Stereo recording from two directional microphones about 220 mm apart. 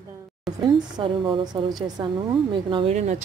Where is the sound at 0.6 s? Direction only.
20° right (ahead or behind).